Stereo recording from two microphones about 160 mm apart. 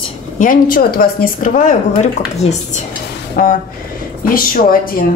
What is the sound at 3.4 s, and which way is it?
A woman's voice, 65° left (ahead or behind).